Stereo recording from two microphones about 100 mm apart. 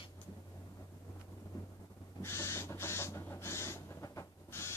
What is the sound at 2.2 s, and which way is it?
Owl, 25° left (ahead or behind).